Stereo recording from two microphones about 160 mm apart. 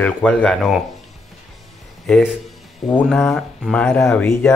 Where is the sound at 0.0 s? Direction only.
10° left (ahead or behind).